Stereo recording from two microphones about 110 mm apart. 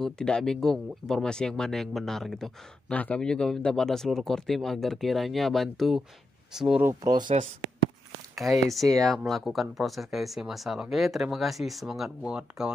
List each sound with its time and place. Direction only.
0.0 s speech: 5° left (ahead or behind)
7.3 s speech: 75° right (ahead or behind)
8.4 s speech: centre (ahead or behind)